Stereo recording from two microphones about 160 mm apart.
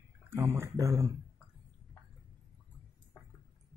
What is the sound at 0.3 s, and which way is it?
Speech, 15° right (ahead or behind).